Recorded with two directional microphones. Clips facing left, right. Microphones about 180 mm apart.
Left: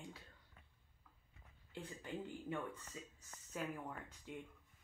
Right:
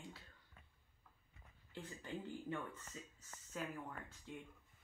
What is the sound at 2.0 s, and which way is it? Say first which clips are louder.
Speech: even; 10° left (ahead or behind).